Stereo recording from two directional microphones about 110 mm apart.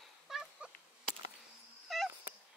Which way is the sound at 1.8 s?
Centre (ahead or behind).